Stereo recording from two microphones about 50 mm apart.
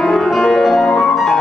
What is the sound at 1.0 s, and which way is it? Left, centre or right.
Music, centre.